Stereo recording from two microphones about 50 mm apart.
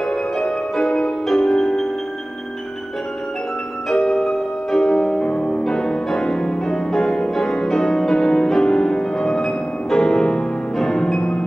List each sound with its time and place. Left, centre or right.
0.0 s music: centre
4.1 s music: centre